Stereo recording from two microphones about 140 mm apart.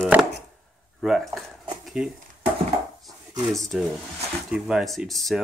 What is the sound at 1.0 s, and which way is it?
Speech, centre (ahead or behind).